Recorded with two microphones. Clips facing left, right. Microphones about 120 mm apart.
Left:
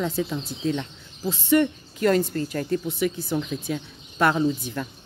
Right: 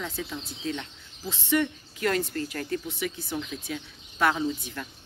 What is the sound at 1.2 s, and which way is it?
A woman's voice, 50° left (ahead or behind).